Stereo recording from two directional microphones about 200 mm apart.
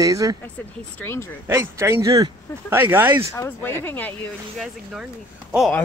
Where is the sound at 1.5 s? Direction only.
15° right (ahead or behind).